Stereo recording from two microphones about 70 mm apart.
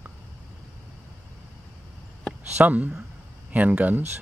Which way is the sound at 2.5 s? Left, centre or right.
Right.